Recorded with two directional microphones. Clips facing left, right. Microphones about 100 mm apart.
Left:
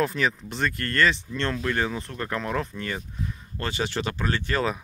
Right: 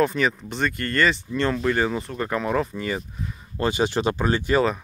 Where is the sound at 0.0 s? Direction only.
Centre (ahead or behind).